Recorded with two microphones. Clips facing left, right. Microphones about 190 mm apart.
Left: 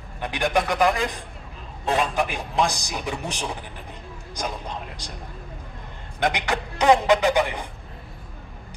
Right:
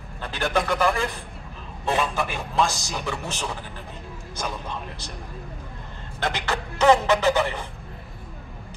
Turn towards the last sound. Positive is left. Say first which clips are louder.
# left 1 dB
turn(degrees=15)  # may be behind; listen again after turning